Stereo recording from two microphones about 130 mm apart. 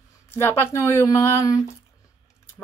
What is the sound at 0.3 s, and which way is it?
Speech, 15° left (ahead or behind).